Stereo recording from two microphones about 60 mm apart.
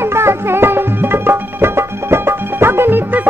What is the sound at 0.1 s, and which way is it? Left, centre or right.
Music, right.